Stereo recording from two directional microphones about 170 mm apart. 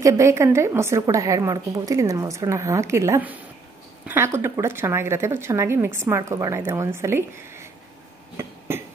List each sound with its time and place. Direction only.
0.0 s speech: 15° right (ahead or behind)
8.4 s cough: 15° right (ahead or behind)